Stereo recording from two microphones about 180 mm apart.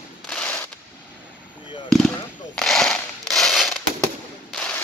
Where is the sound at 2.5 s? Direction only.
5° left (ahead or behind).